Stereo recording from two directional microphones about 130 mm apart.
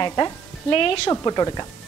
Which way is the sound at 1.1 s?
30° left (ahead or behind).